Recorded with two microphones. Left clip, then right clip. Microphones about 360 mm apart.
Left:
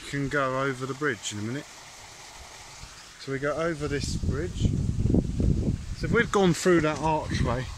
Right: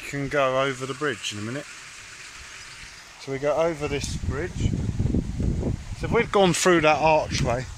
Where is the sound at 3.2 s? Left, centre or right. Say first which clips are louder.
Right 5 dB; right.